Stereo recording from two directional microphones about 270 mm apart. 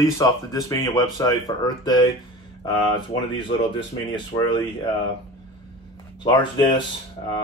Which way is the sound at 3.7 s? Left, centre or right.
Centre.